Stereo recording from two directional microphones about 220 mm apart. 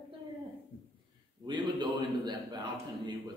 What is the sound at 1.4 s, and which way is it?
A man's voice, 20° right (ahead or behind).